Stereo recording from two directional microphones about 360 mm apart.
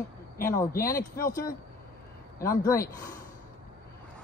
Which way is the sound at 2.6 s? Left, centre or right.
Centre.